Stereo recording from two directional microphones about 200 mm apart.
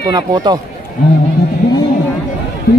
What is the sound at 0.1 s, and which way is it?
Speech, 20° right (ahead or behind).